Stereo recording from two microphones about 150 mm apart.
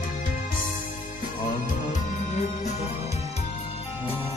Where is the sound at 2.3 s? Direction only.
50° left (ahead or behind).